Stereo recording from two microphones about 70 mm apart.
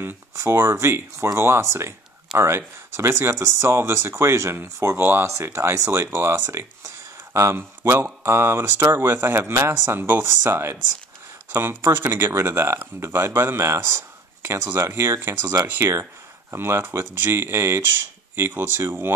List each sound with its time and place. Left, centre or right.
0.0 s speech: right
11.8 s speech: right